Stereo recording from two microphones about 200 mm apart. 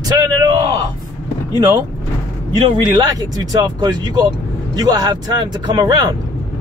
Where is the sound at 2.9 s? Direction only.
20° right (ahead or behind).